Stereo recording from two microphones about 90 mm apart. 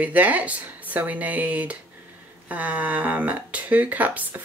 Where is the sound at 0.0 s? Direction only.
15° right (ahead or behind).